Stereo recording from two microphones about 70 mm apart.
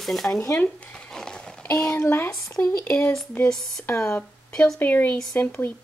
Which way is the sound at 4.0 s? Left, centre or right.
Centre.